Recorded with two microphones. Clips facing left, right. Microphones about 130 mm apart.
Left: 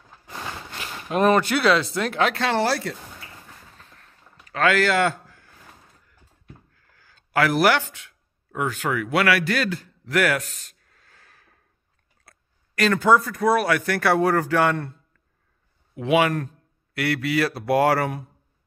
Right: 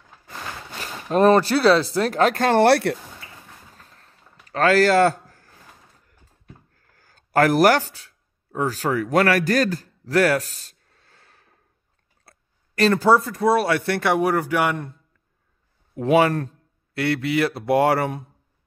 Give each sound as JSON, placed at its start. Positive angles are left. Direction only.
{"t": 1.1, "sound": "speech", "side_deg": -35}
{"t": 3.8, "sound": "artillery fire", "side_deg": -35}
{"t": 4.5, "sound": "a man's voice", "side_deg": -35}
{"t": 6.7, "sound": "a sound", "side_deg": -45}
{"t": 8.5, "sound": "a man's voice", "side_deg": -35}
{"t": 14.1, "sound": "speech", "side_deg": -15}
{"t": 16.0, "sound": "speech", "side_deg": -35}
{"t": 16.9, "sound": "speech", "side_deg": -25}